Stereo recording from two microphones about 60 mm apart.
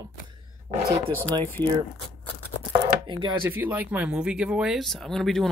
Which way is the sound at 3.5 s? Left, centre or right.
Right.